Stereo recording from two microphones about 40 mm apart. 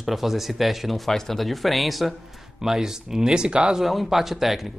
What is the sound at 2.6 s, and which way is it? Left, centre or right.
Speech, centre.